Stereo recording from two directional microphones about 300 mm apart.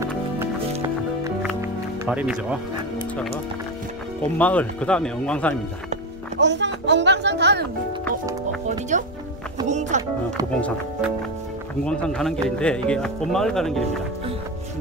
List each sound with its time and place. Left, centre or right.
0.8 s music: centre
4.2 s speech: centre
6.4 s speech: right
8.6 s speech: right
10.6 s speech: centre